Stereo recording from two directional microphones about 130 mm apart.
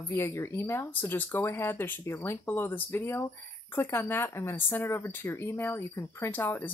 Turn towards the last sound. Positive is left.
turn(degrees=15)  # may be behind; listen again after turning